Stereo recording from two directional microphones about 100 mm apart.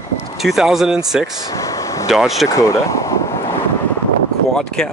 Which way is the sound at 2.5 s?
30° left (ahead or behind).